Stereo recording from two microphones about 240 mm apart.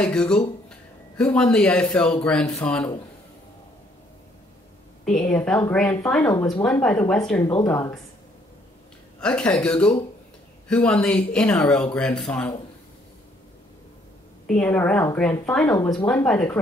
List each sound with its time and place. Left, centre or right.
0.0 s a man's voice: centre
5.3 s speech: centre
6.6 s speech: centre
9.2 s speech: centre
14.5 s speech: centre